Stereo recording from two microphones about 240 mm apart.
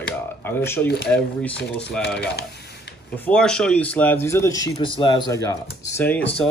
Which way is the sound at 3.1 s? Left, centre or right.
Centre.